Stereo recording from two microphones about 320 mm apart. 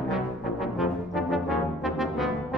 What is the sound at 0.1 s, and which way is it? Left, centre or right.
Brass instrument, centre.